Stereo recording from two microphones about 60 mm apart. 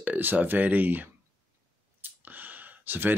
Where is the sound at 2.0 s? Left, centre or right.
Right.